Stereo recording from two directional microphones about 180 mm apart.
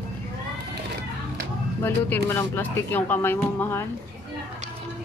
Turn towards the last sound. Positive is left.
turn(degrees=15)  # may be behind; listen again after turning